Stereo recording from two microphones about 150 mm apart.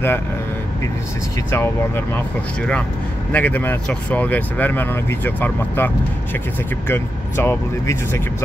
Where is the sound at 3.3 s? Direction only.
10° left (ahead or behind).